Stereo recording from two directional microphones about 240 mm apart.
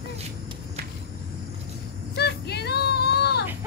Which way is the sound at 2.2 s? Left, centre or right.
Left.